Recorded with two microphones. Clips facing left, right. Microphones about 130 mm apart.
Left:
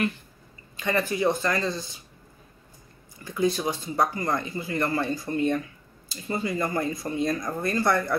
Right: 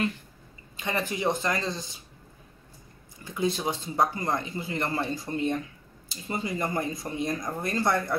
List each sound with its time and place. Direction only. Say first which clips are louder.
0.7 s speech: left 4 dB; 20° right (ahead or behind)
3.3 s speech: left 3 dB; 25° right (ahead or behind)